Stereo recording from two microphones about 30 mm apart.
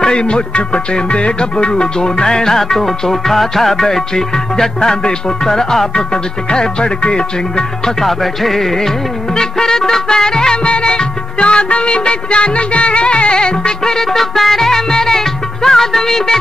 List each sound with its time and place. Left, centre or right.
0.1 s music: left
2.2 s music: centre
8.0 s music: centre
9.3 s music: centre
10.6 s music: left
11.3 s music: left
13.9 s music: centre